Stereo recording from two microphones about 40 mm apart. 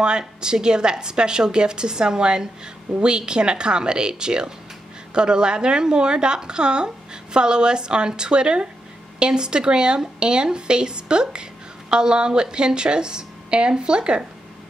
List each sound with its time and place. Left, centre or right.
0.0 s a woman's voice: right